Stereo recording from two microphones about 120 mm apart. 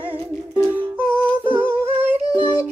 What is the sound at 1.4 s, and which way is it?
Humming, 15° right (ahead or behind).